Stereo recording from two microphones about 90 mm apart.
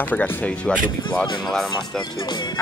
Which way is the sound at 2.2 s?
55° left (ahead or behind).